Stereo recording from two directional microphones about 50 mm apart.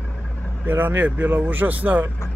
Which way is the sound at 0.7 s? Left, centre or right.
Right.